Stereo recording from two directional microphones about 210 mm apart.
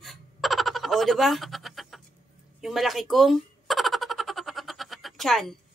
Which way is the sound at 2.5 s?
Centre (ahead or behind).